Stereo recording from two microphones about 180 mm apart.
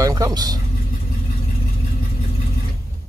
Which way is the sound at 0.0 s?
20° right (ahead or behind).